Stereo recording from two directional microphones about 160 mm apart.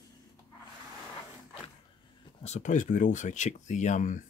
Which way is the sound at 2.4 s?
45° left (ahead or behind).